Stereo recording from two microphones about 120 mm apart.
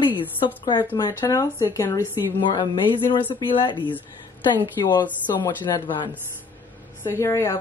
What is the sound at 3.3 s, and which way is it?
A woman's voice, 40° left (ahead or behind).